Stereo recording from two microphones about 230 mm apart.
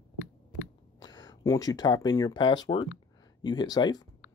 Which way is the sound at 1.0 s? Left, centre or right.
Centre.